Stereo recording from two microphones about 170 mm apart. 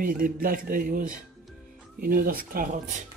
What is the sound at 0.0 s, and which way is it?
Speech, 55° right (ahead or behind).